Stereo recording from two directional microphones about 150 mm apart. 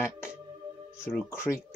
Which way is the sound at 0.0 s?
20° left (ahead or behind).